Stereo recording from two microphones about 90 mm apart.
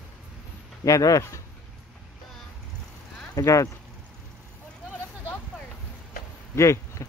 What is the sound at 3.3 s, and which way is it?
Speech, 35° left (ahead or behind).